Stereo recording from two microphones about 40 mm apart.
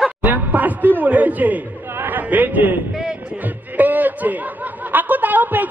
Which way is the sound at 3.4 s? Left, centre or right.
Right.